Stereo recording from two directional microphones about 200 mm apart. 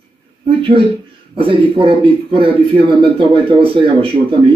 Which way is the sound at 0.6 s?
25° right (ahead or behind).